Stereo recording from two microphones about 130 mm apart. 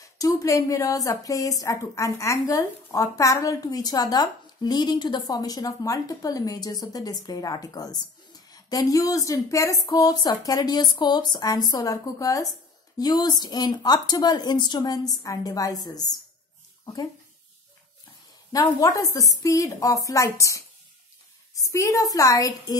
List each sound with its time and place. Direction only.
0.0 s a woman's voice: 25° left (ahead or behind)
18.5 s a woman's voice: 25° left (ahead or behind)